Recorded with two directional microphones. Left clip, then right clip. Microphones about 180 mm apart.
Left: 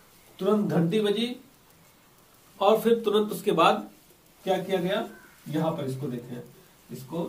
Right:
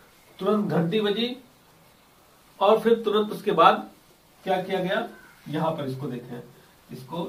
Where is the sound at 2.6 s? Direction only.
20° left (ahead or behind).